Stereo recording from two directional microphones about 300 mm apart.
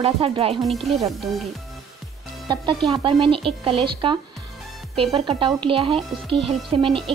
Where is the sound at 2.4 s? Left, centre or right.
Centre.